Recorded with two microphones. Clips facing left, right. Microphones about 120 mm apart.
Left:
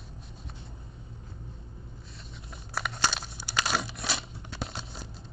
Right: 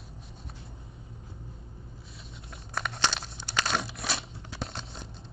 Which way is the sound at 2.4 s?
5° left (ahead or behind).